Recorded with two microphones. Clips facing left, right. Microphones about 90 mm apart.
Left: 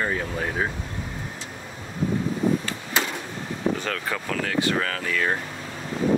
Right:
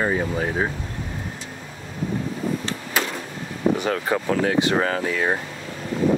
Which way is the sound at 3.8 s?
20° right (ahead or behind).